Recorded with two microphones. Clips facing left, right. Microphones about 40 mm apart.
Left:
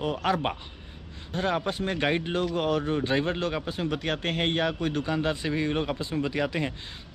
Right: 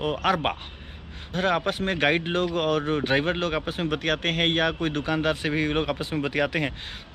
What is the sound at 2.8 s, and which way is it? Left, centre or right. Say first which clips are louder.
Speech: right 2 dB; right.